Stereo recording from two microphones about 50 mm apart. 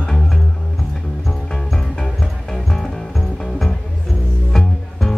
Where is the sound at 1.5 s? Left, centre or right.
Centre.